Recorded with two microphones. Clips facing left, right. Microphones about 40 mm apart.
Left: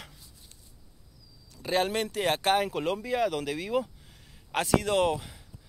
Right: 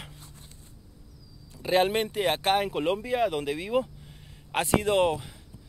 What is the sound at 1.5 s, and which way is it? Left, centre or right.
Speech, right.